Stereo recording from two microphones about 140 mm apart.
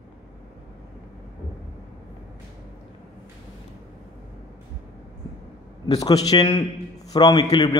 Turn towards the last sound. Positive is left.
turn(degrees=30)  # may be behind; listen again after turning